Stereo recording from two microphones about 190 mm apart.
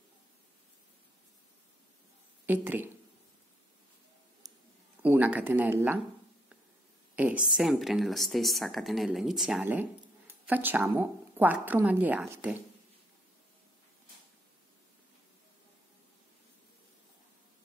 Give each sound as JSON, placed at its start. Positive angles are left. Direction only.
{"t": 2.4, "sound": "a woman's voice", "side_deg": -10}
{"t": 4.4, "sound": "a sound", "side_deg": -20}
{"t": 5.0, "sound": "speech", "side_deg": -10}
{"t": 7.2, "sound": "speech", "side_deg": -5}